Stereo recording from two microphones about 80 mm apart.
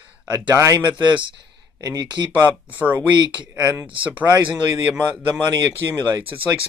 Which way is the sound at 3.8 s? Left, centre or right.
Centre.